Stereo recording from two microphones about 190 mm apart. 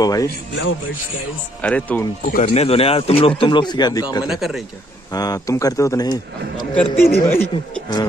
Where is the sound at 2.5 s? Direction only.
30° left (ahead or behind).